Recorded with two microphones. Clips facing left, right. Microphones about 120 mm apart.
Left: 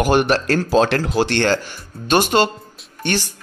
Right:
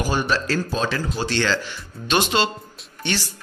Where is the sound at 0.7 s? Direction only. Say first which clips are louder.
Left 8 dB; 80° left.